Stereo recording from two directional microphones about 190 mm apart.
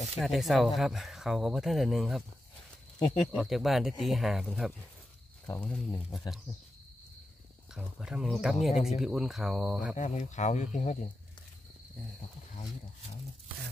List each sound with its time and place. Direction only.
0.2 s speech: centre (ahead or behind)
7.7 s speech: 5° right (ahead or behind)
9.9 s speech: 40° left (ahead or behind)